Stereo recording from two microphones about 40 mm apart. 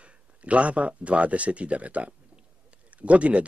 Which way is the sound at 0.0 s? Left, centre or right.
Right.